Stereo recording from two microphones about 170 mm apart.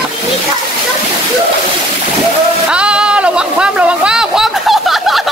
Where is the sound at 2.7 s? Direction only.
5° right (ahead or behind).